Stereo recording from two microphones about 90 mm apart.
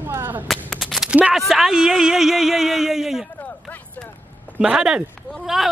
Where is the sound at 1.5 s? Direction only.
5° right (ahead or behind).